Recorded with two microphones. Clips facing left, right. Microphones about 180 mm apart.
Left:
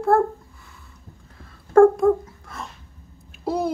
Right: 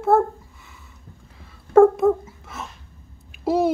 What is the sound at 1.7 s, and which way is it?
Dog, 5° right (ahead or behind).